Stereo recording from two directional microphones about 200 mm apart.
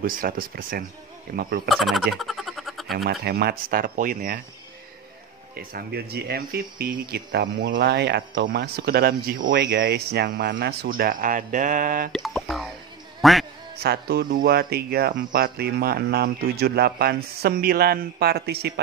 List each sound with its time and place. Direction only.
0.0 s speech: 45° right (ahead or behind)
1.7 s a sound: centre (ahead or behind)
3.1 s speech: 55° right (ahead or behind)
5.6 s speech: 50° right (ahead or behind)
12.1 s speech: centre (ahead or behind)
13.2 s quack: centre (ahead or behind)
13.8 s speech: 55° right (ahead or behind)